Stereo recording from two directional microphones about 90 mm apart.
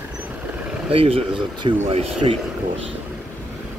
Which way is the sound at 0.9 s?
90° right.